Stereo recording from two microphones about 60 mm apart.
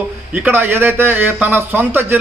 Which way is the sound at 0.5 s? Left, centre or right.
Right.